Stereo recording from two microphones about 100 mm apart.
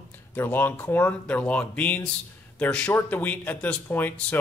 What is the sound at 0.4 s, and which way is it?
A man's voice, 20° left (ahead or behind).